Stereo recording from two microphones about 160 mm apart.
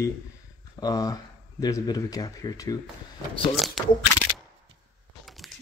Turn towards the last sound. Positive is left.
turn(degrees=0)  # may be behind; listen again after turning